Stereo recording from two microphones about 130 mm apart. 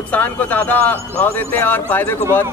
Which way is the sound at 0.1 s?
10° left (ahead or behind).